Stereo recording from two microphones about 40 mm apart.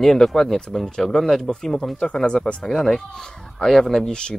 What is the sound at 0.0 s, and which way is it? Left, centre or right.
Speech, centre.